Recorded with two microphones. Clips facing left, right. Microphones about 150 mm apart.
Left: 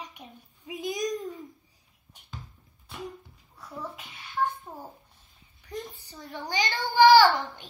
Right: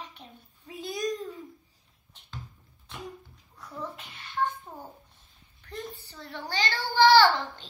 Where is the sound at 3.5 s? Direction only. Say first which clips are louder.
Even; 10° left (ahead or behind).